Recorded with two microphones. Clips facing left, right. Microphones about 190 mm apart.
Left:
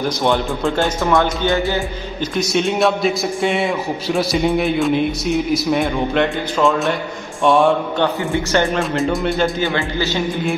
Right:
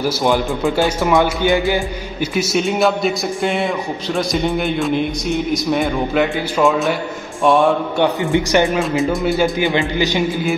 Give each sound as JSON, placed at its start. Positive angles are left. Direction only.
{"t": 0.0, "sound": "a man's voice", "side_deg": 0}
{"t": 2.3, "sound": "a man's voice", "side_deg": 0}
{"t": 8.0, "sound": "speech", "side_deg": -15}
{"t": 8.7, "sound": "a man's voice", "side_deg": 0}
{"t": 9.6, "sound": "speech", "side_deg": -15}